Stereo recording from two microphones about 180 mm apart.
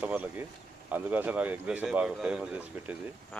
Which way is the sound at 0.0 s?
10° right (ahead or behind).